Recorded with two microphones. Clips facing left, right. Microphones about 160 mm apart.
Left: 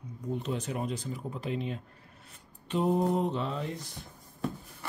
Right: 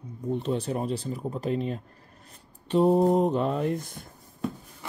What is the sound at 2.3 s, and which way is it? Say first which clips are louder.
Mantra: right 7 dB; 35° right (ahead or behind).